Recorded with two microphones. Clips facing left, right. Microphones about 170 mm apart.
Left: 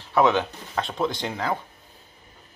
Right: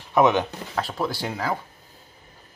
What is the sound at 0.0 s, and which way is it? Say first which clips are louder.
Speech: right 1 dB; 15° right (ahead or behind).